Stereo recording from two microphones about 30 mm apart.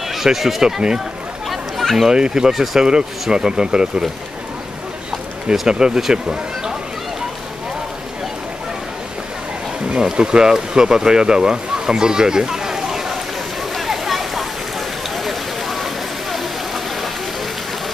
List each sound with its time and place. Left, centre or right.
0.1 s speech: centre
1.5 s chatter: centre
2.1 s speech: right
2.5 s speech: centre
2.8 s speech: right
5.7 s speech: right
9.8 s speech: right; by 13.2 s centre
13.7 s a sound: centre